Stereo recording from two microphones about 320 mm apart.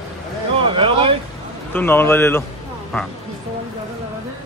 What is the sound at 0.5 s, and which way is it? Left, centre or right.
Speech, centre.